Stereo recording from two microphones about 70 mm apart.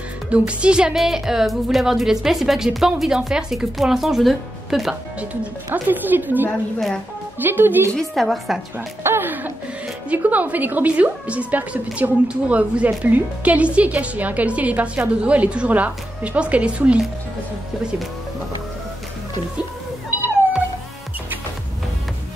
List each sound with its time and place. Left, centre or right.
0.3 s speech: centre
5.7 s a woman's voice: right
7.9 s speech: centre
8.7 s a woman's voice: right